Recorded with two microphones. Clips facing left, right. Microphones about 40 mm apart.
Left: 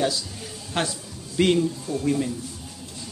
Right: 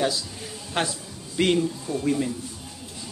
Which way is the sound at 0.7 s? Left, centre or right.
Centre.